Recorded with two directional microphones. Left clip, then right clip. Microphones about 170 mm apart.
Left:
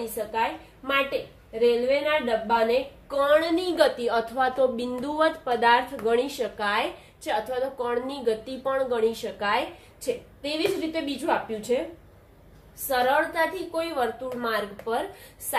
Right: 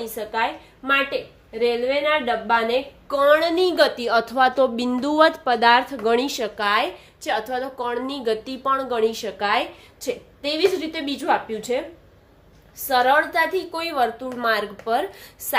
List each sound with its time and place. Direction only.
0.8 s a woman's voice: 55° right (ahead or behind)
12.8 s a woman's voice: 55° right (ahead or behind)